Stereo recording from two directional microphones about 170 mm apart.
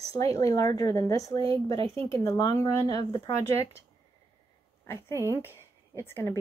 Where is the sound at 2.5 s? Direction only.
40° right (ahead or behind).